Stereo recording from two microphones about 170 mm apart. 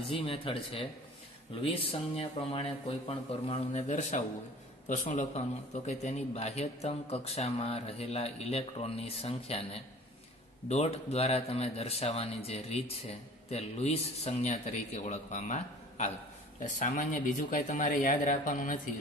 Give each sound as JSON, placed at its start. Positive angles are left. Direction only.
{"t": 0.1, "sound": "a man's voice", "side_deg": 35}
{"t": 10.7, "sound": "a man's voice", "side_deg": 40}